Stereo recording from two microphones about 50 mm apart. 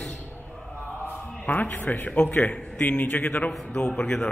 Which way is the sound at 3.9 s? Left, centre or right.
Centre.